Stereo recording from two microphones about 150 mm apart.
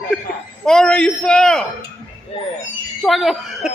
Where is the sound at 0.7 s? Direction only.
5° left (ahead or behind).